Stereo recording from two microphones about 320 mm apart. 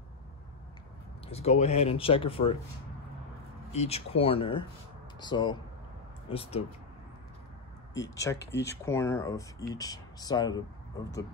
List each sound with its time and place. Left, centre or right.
1.3 s speech: centre
3.7 s speech: centre
7.9 s speech: centre
8.4 s speech: left
8.6 s speech: centre